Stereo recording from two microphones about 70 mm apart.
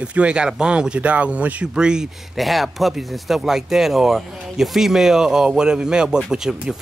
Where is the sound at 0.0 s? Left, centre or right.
Centre.